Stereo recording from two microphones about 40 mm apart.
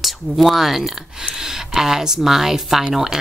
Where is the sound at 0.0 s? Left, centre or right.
Centre.